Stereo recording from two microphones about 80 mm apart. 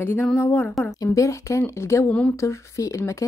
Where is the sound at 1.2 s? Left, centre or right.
Left.